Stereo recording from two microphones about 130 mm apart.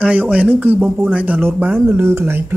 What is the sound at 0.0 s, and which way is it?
Speech, 10° right (ahead or behind).